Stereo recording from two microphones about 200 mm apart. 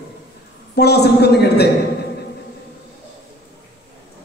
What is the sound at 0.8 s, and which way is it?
Speech, 55° left (ahead or behind).